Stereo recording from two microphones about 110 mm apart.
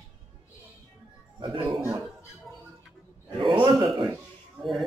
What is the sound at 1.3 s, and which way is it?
Music, 55° right (ahead or behind).